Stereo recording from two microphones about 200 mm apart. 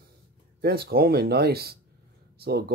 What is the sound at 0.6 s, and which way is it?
Speech, 50° right (ahead or behind).